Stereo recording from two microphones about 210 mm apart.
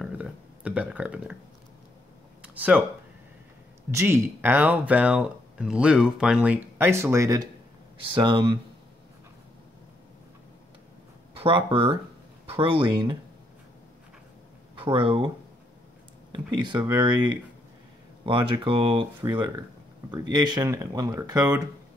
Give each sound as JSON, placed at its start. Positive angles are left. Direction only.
{"t": 0.0, "sound": "a sound", "side_deg": -5}
{"t": 2.4, "sound": "a sound", "side_deg": -5}
{"t": 3.9, "sound": "speech", "side_deg": -10}
{"t": 11.3, "sound": "speech", "side_deg": -25}
{"t": 14.8, "sound": "speech", "side_deg": -25}
{"t": 18.2, "sound": "speech", "side_deg": -25}